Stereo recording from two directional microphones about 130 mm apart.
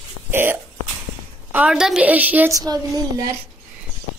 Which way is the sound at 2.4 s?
25° right (ahead or behind).